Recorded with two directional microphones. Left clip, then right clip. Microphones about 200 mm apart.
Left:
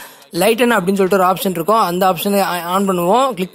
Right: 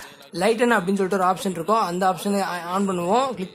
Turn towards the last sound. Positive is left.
turn(degrees=35)  # may be behind; listen again after turning